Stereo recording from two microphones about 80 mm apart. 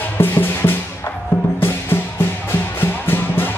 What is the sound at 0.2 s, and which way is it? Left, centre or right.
Music, left.